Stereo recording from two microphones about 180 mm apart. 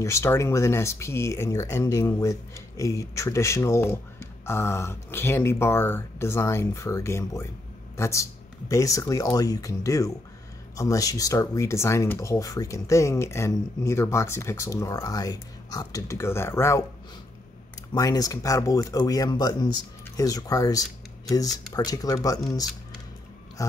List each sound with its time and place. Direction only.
0.0 s speech: 15° left (ahead or behind)
17.9 s speech: 20° left (ahead or behind)
23.6 s speech: 20° left (ahead or behind)